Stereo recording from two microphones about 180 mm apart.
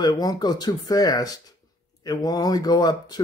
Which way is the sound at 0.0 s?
20° left (ahead or behind).